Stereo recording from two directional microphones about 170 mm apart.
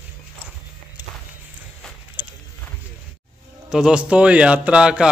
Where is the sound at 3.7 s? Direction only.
5° right (ahead or behind).